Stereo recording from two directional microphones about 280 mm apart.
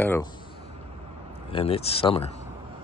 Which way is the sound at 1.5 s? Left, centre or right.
Left.